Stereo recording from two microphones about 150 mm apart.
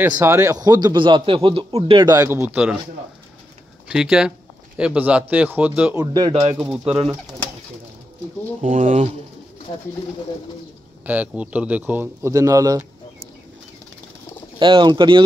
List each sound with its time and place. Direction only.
0.1 s a man's voice: 20° right (ahead or behind); by 2.0 s 40° right (ahead or behind)
2.0 s speech: 20° right (ahead or behind)
3.9 s speech: 5° right (ahead or behind)
5.9 s speech: 25° right (ahead or behind)
6.5 s speech: 5° right (ahead or behind)
8.6 s speech: 55° right (ahead or behind)
11.1 s speech: 10° right (ahead or behind)
14.6 s a man's voice: 30° right (ahead or behind)